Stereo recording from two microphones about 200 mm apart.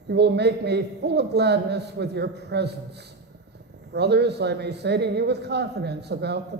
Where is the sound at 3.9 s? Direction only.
55° right (ahead or behind).